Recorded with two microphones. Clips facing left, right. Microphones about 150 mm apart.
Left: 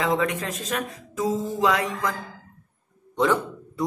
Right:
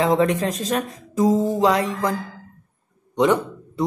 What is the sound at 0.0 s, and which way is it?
Speech, 35° right (ahead or behind).